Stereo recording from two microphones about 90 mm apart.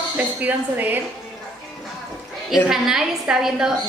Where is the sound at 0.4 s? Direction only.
20° right (ahead or behind).